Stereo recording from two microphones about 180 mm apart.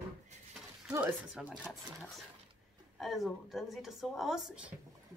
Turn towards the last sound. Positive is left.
turn(degrees=-5)  # may be behind; listen again after turning